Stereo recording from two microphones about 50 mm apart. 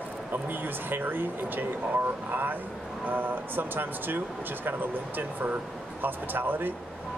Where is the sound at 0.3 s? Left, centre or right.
Right.